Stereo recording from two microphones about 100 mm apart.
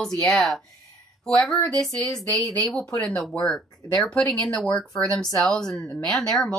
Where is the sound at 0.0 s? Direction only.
5° left (ahead or behind).